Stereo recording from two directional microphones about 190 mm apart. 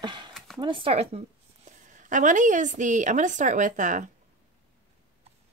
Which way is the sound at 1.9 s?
40° right (ahead or behind).